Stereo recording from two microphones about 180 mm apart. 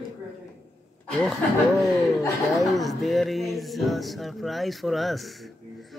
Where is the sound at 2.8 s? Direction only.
Centre (ahead or behind).